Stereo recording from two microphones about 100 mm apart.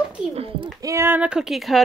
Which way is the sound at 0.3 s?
75° right (ahead or behind).